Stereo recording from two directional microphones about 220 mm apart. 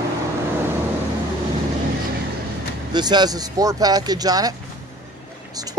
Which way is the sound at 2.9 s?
20° right (ahead or behind).